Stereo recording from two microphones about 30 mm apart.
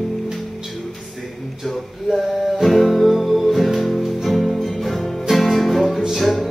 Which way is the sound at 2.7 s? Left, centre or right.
Centre.